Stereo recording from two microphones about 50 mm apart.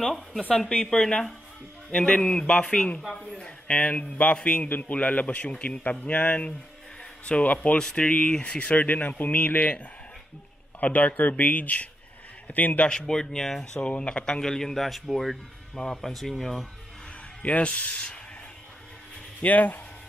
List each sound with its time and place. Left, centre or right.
0.5 s speech: centre
1.9 s a man's voice: left
4.6 s a man's voice: left
10.8 s speech: left
12.8 s speech: centre
13.7 s speech: left
17.4 s a man's voice: left
19.4 s speech: left